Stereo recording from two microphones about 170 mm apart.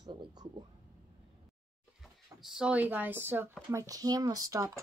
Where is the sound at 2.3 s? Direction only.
Centre (ahead or behind); by 4.7 s 20° right (ahead or behind).